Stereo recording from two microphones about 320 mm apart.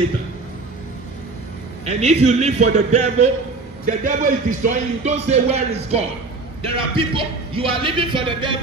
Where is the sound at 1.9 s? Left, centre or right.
Centre.